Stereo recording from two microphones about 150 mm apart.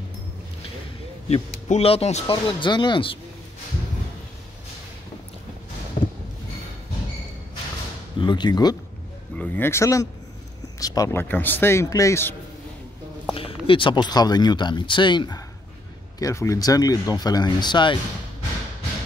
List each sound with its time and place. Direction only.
1.3 s speech: 40° left (ahead or behind)
2.6 s speech: 30° left (ahead or behind)
6.0 s a sound: 55° left (ahead or behind)
8.2 s speech: 30° left (ahead or behind)
9.4 s speech: 15° left (ahead or behind)
13.3 s a sound: 35° left (ahead or behind)
13.7 s speech: 35° left (ahead or behind)